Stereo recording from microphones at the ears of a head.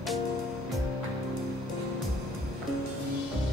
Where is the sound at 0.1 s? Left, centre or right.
Left.